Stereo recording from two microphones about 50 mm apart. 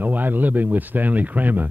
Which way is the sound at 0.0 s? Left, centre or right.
Right.